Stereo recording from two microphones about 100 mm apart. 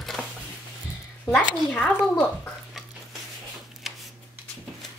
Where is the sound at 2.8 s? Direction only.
Centre (ahead or behind).